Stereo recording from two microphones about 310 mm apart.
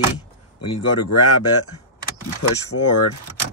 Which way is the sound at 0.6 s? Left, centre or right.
Left.